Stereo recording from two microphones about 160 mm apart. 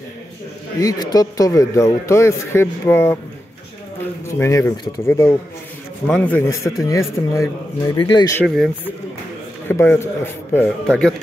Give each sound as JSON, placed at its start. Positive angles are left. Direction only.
{"t": 0.7, "sound": "speech", "side_deg": 20}
{"t": 4.4, "sound": "speech", "side_deg": 20}
{"t": 6.0, "sound": "a man's voice", "side_deg": 10}
{"t": 8.5, "sound": "a man's voice", "side_deg": 0}
{"t": 9.7, "sound": "a man's voice", "side_deg": 15}